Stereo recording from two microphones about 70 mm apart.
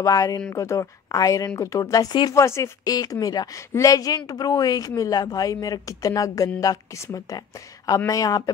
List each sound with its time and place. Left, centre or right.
0.0 s speech: left
2.3 s speech: left
2.8 s speech: left